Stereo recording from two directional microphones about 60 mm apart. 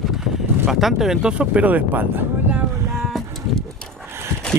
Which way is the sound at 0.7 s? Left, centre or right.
Centre.